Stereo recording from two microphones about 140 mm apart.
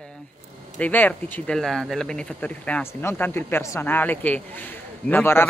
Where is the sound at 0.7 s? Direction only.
10° left (ahead or behind).